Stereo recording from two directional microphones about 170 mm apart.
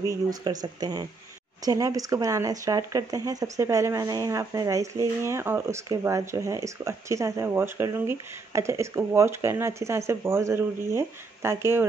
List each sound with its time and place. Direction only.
0.0 s speech: 20° right (ahead or behind)